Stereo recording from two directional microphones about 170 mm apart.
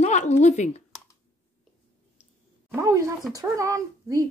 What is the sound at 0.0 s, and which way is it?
Speech, 45° left (ahead or behind).